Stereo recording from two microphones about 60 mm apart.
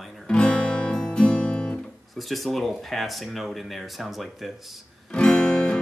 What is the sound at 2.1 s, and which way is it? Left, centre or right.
Speech, centre.